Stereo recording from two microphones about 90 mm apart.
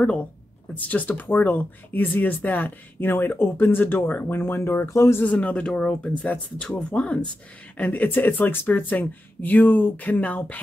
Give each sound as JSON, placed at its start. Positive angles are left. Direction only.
{"t": 0.0, "sound": "speech", "side_deg": 10}
{"t": 5.2, "sound": "speech", "side_deg": 15}